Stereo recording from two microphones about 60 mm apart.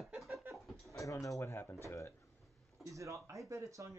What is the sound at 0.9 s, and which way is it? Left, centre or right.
Speech, left.